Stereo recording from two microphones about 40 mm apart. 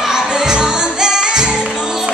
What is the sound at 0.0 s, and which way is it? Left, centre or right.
Music, centre.